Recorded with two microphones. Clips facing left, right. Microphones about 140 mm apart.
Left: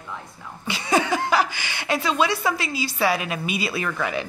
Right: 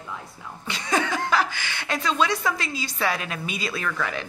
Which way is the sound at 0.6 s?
5° left (ahead or behind).